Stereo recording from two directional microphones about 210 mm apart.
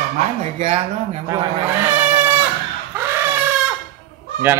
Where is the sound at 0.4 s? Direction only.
30° right (ahead or behind).